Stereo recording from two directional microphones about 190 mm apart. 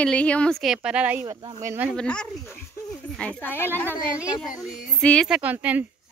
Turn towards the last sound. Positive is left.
turn(degrees=-10)  # may be behind; listen again after turning